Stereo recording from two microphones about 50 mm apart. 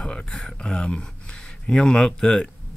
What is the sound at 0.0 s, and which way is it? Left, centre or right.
Speech, centre.